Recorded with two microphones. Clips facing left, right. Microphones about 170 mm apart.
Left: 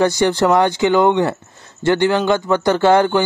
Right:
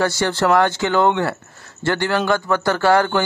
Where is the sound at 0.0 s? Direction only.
15° left (ahead or behind).